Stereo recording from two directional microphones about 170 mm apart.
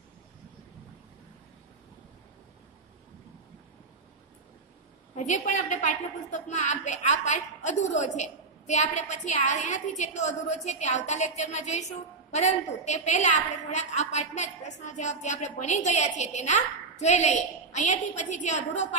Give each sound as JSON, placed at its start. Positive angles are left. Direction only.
{"t": 5.1, "sound": "a woman's voice", "side_deg": 45}